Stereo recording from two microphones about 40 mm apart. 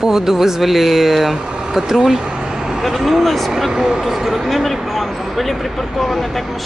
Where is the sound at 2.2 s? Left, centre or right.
Centre.